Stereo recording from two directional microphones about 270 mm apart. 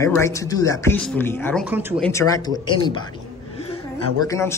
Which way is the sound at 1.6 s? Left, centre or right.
Centre.